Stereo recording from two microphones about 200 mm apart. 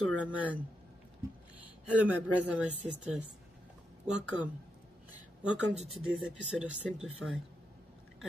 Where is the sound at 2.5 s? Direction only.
5° right (ahead or behind).